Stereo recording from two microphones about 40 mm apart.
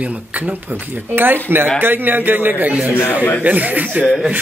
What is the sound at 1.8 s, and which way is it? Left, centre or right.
A man's voice, right.